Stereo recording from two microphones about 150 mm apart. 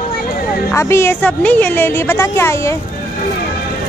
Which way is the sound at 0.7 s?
20° left (ahead or behind).